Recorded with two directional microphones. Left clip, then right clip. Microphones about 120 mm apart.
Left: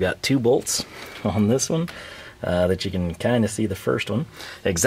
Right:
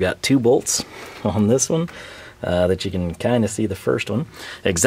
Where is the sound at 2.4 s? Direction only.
10° right (ahead or behind).